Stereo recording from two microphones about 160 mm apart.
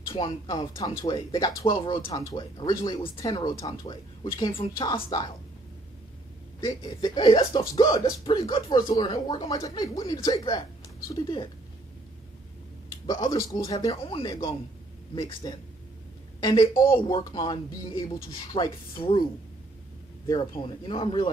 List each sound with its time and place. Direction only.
0.1 s speech: 25° left (ahead or behind)
1.7 s speech: 35° left (ahead or behind)
6.6 s speech: 25° left (ahead or behind)
13.0 s speech: 25° left (ahead or behind)
15.4 s a woman's voice: 30° left (ahead or behind)
20.2 s speech: 25° left (ahead or behind)